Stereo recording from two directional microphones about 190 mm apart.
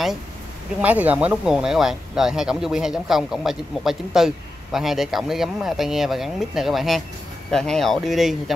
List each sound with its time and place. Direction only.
0.7 s speech: 10° right (ahead or behind)